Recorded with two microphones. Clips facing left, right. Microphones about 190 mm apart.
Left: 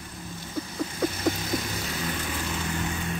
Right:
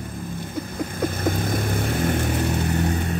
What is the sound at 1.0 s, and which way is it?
Vehicle, 55° right (ahead or behind).